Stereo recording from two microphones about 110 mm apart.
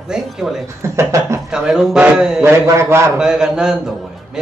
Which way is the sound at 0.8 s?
25° right (ahead or behind).